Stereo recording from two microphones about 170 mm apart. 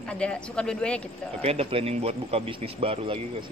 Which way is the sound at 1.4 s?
35° right (ahead or behind).